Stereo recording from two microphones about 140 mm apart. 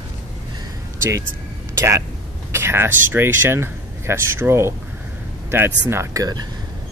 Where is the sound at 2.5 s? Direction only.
20° right (ahead or behind).